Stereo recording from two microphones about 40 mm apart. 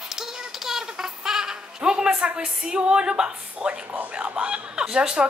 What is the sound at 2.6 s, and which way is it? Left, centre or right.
A woman's voice, right.